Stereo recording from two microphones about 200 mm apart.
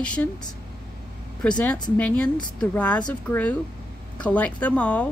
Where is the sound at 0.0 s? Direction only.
5° left (ahead or behind).